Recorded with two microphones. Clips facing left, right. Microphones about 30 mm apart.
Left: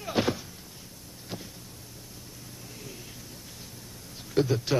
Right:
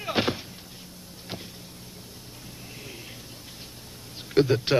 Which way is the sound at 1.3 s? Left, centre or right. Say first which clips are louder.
Right 1 dB; right.